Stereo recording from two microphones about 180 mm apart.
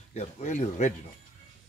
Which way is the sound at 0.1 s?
40° left (ahead or behind).